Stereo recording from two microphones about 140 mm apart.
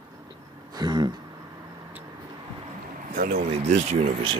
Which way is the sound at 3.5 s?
50° right (ahead or behind).